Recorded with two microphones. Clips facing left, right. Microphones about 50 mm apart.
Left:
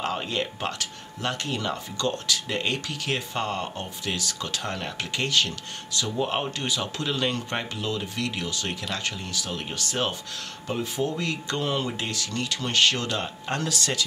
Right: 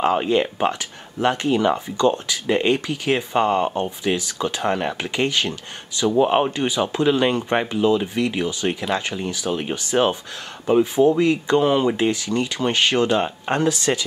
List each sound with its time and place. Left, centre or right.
0.0 s speech: right